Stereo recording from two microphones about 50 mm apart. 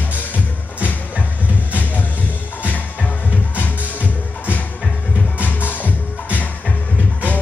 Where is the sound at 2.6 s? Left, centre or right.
Left.